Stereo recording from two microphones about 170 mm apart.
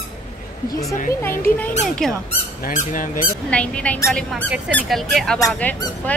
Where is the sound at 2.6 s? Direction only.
55° left (ahead or behind).